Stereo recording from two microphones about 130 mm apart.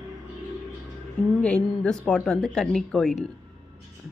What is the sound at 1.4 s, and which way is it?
Speech, 5° left (ahead or behind).